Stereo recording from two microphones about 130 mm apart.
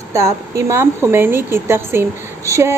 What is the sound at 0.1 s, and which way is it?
A woman's voice, 20° right (ahead or behind).